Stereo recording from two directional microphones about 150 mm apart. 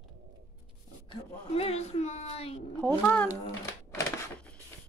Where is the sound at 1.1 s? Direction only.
45° left (ahead or behind).